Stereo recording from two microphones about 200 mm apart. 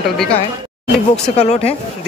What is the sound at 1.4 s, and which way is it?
Speech, 30° left (ahead or behind).